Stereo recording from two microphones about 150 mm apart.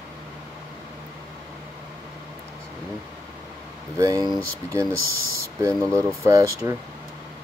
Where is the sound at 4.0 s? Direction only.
25° right (ahead or behind).